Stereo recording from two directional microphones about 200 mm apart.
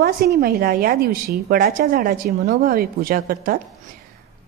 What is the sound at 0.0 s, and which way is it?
A woman's voice, 50° right (ahead or behind).